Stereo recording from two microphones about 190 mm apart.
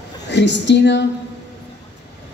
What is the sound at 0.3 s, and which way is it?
Speech, 65° left (ahead or behind).